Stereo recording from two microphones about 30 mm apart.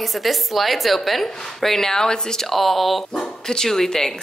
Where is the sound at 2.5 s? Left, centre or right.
Centre.